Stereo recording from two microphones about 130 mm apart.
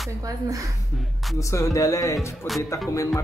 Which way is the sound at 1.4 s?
25° left (ahead or behind).